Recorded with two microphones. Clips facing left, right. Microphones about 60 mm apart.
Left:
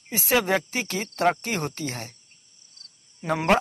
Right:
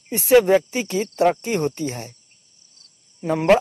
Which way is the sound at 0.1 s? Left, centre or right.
Centre.